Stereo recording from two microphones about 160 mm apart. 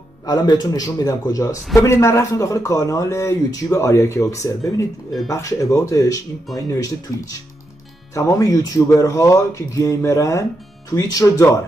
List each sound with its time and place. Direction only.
0.3 s speech: 25° left (ahead or behind)
8.1 s speech: 20° left (ahead or behind)